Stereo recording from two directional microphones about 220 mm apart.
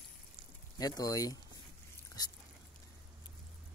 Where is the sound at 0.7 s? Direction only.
15° left (ahead or behind).